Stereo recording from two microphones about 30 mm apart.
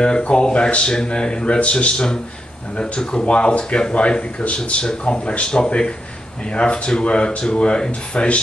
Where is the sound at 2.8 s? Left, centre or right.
Left.